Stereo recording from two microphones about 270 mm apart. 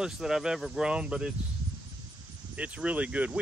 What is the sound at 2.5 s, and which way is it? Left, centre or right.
Speech, centre.